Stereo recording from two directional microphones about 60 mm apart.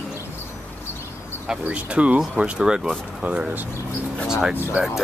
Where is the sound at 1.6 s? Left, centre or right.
Right.